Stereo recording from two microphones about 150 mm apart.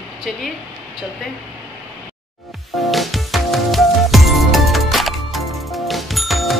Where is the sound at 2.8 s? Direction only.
Centre (ahead or behind).